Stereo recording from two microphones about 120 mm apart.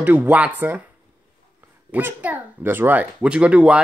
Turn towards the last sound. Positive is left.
turn(degrees=-10)  # may be behind; listen again after turning